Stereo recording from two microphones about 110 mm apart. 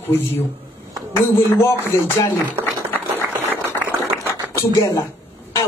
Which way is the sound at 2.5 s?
20° right (ahead or behind).